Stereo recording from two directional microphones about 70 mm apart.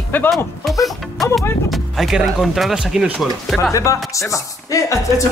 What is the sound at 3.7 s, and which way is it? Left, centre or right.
Speech, left.